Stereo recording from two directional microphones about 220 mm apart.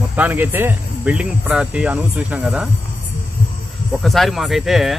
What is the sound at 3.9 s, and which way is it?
Speech, centre (ahead or behind).